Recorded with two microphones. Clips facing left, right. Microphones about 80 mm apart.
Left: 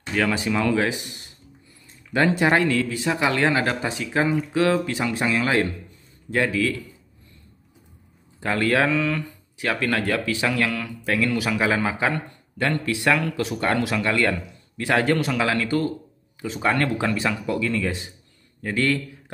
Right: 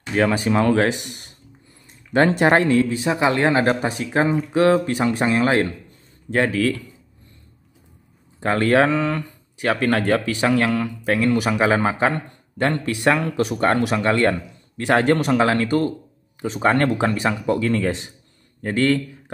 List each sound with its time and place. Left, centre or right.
0.4 s speech: right
0.7 s speech: right
2.1 s speech: right
2.5 s a man's voice: right
3.4 s speech: right
4.5 s speech: right
8.4 s speech: right
9.7 s speech: right
10.3 s a man's voice: right
17.6 s a man's voice: right